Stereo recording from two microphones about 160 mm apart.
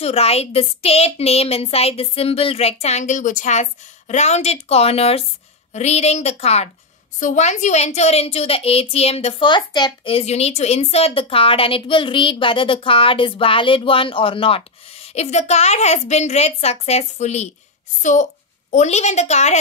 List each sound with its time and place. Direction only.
0.0 s a woman's voice: 40° left (ahead or behind)